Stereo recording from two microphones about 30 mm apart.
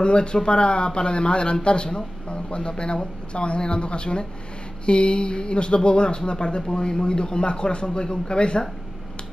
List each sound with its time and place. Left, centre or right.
0.0 s speech: left